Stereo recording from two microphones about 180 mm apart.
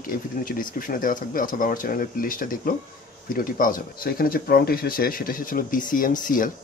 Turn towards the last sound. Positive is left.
turn(degrees=50)  # may be behind; listen again after turning